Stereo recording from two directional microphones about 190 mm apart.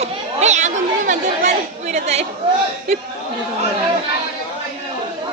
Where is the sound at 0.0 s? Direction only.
35° right (ahead or behind).